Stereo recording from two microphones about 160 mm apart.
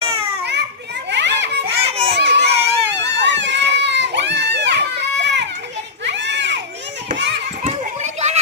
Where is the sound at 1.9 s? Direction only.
40° right (ahead or behind).